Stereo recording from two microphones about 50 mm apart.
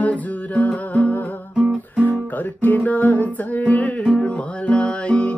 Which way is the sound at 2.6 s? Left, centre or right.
Left.